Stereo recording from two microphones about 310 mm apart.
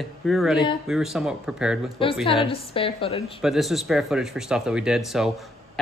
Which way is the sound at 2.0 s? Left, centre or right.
Centre.